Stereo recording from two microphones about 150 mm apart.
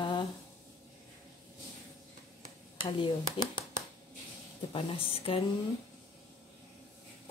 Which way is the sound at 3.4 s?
35° left (ahead or behind).